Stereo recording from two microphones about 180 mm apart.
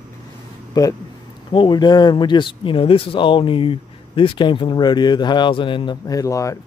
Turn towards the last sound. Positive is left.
turn(degrees=15)  # may be behind; listen again after turning